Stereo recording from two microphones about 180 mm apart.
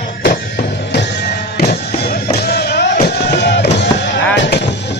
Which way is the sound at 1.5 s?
60° left (ahead or behind).